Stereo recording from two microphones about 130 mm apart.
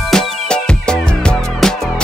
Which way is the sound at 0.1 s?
5° left (ahead or behind).